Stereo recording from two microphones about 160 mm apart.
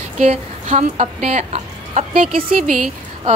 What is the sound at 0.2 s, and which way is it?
Speech, 40° right (ahead or behind).